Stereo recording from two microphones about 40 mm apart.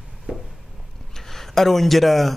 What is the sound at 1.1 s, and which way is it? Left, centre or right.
Speech, centre.